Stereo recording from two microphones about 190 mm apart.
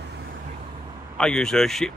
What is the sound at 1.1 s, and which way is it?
Speech, 5° left (ahead or behind).